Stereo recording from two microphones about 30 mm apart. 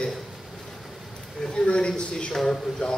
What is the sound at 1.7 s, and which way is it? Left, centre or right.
Speech, left.